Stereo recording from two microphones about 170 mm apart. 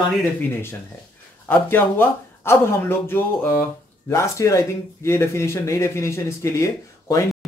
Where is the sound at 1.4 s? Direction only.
10° left (ahead or behind).